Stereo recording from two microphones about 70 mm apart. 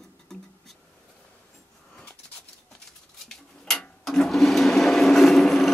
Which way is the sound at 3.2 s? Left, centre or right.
Centre.